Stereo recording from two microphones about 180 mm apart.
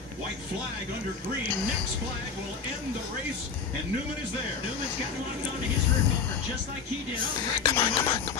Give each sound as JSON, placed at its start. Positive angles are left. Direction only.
{"t": 7.6, "sound": "speech", "side_deg": 30}